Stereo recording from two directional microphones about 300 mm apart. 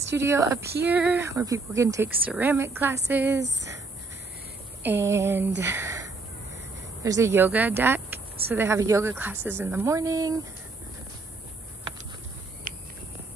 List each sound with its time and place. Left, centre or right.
0.0 s speech: centre
4.8 s speech: centre
12.7 s a sound: right